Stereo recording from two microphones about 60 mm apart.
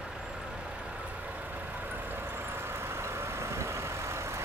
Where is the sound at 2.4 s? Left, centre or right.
Right.